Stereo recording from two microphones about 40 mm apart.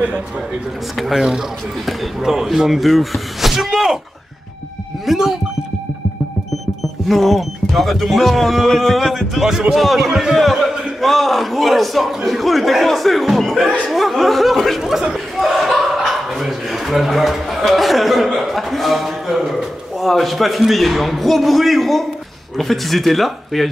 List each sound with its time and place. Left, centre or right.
0.9 s speech: centre
5.0 s speech: centre
7.1 s speech: centre
9.5 s speech: centre
9.8 s a man's voice: centre
14.8 s speech: centre
15.3 s chuckle: centre
22.6 s speech: centre